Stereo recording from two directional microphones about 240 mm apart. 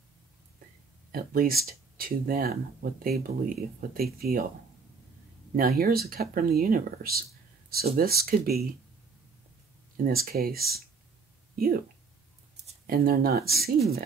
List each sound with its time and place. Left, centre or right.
1.1 s speech: right
5.6 s speech: right
10.0 s speech: right
12.8 s speech: right